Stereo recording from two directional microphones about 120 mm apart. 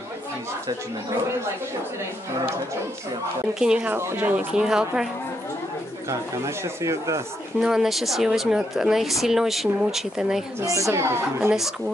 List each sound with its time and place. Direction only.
3.5 s speech: 5° right (ahead or behind)
3.9 s speech: 20° right (ahead or behind)
6.0 s speech: 25° right (ahead or behind)
7.6 s a woman's voice: 5° right (ahead or behind)
10.6 s speech: 25° right (ahead or behind)